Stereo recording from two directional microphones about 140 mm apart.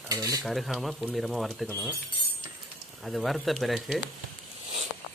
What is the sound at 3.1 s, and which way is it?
Speech, centre (ahead or behind).